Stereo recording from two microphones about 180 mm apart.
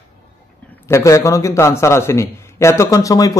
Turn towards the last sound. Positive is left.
turn(degrees=20)  # may be behind; listen again after turning